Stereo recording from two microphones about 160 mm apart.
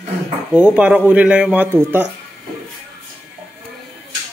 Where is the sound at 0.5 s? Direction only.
5° right (ahead or behind).